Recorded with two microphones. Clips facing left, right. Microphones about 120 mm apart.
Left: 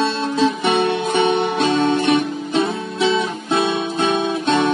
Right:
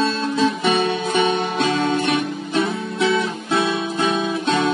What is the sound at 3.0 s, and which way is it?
Guitar, 25° left (ahead or behind).